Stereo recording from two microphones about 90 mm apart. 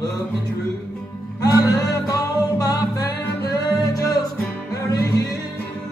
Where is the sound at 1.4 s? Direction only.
40° left (ahead or behind).